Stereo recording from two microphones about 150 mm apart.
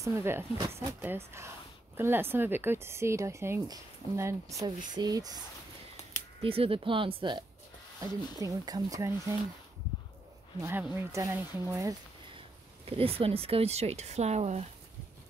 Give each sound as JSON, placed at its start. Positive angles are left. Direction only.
{"t": 0.0, "sound": "speech", "side_deg": -15}
{"t": 6.4, "sound": "speech", "side_deg": -40}
{"t": 8.0, "sound": "speech", "side_deg": -20}
{"t": 10.6, "sound": "speech", "side_deg": -10}
{"t": 12.8, "sound": "speech", "side_deg": -40}